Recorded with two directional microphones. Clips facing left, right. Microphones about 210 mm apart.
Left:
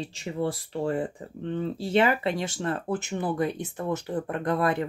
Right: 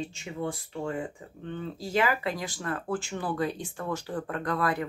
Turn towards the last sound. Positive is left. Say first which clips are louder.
# left 3 dB
turn(degrees=25)  # may be behind; listen again after turning